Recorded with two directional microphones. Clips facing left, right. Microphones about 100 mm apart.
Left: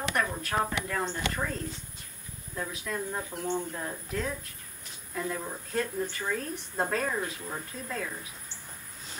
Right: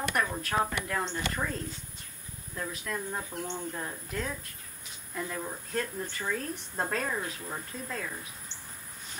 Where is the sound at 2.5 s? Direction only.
Centre (ahead or behind).